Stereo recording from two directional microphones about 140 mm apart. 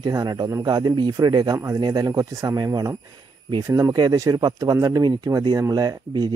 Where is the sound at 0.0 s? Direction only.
30° right (ahead or behind).